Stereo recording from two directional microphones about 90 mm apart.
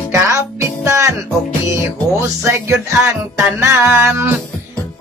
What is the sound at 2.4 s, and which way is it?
Speech, 30° right (ahead or behind).